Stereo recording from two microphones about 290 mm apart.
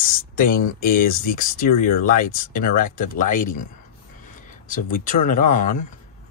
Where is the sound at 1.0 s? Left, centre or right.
Left.